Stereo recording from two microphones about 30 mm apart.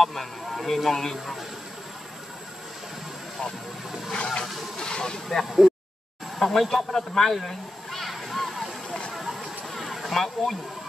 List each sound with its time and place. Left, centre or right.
0.0 s speech: centre
4.1 s speech: left
5.4 s speech: centre
6.3 s a sound: centre